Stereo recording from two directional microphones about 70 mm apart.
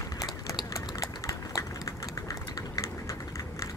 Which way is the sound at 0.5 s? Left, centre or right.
Left.